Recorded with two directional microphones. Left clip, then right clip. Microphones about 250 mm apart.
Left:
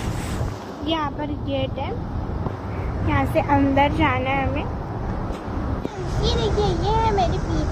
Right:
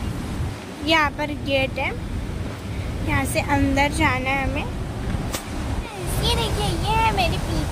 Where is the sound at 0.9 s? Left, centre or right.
Right.